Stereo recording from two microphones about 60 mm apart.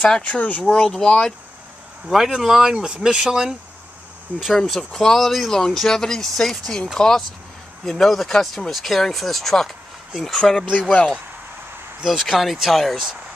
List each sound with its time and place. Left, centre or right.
0.0 s speech: centre
0.7 s speech: centre
2.0 s speech: centre
12.0 s speech: centre